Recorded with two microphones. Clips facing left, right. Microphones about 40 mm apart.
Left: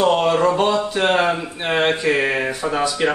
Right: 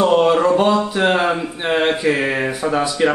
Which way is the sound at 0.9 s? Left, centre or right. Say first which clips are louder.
Right 1 dB; centre.